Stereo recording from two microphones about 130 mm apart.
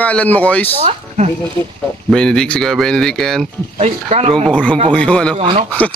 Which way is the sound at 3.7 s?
55° right (ahead or behind).